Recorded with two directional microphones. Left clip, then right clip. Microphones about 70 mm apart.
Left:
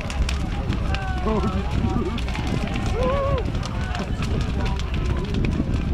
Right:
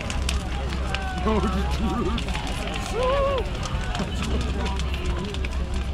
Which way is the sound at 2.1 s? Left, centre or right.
Centre.